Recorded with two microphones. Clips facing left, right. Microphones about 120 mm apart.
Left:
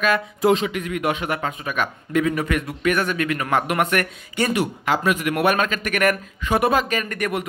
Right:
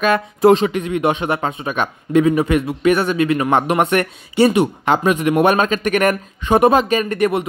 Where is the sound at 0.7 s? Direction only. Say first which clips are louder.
Right 5 dB; 25° right (ahead or behind).